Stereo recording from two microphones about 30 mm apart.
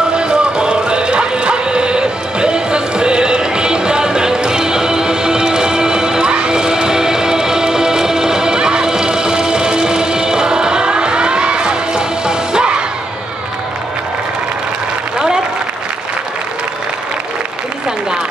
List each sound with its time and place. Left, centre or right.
0.1 s music: right
15.1 s applause: right